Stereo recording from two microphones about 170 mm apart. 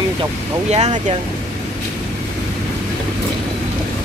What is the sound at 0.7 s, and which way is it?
Speech, 40° right (ahead or behind).